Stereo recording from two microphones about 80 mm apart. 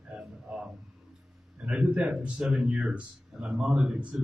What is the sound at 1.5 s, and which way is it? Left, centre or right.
A man's voice, centre.